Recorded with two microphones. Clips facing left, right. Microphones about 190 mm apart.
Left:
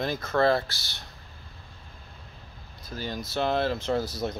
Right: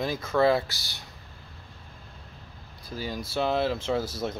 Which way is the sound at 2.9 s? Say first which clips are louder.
Even; 5° right (ahead or behind).